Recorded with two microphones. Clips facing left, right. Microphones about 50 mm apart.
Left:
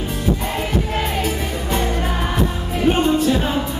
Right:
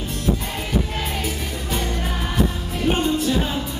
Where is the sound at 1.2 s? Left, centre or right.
Centre.